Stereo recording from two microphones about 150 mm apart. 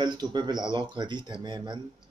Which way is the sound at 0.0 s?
30° right (ahead or behind).